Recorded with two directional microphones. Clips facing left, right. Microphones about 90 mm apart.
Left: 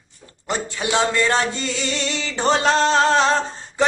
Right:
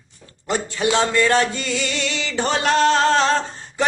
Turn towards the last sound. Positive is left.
turn(degrees=20)  # may be behind; listen again after turning